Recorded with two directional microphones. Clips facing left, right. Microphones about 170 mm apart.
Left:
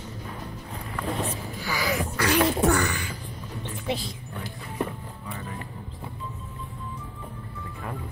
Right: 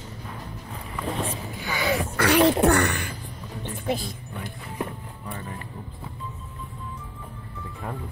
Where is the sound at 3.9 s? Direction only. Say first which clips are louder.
Right 2 dB; 50° right (ahead or behind).